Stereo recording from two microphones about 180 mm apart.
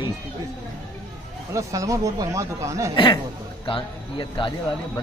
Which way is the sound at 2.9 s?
25° left (ahead or behind).